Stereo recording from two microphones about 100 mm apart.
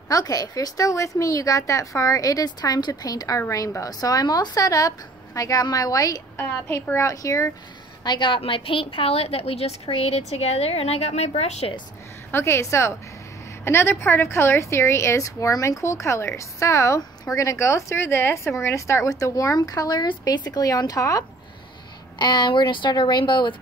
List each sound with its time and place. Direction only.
0.1 s a woman's voice: 35° left (ahead or behind)
6.3 s a woman's voice: 25° left (ahead or behind)
8.0 s a woman's voice: 50° left (ahead or behind)
8.4 s a woman's voice: 60° left (ahead or behind); by 11.7 s 90° left
12.3 s a woman's voice: 25° left (ahead or behind)
22.2 s speech: 50° left (ahead or behind)